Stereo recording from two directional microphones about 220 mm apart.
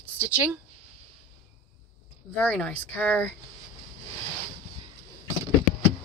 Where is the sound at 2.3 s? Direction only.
5° left (ahead or behind).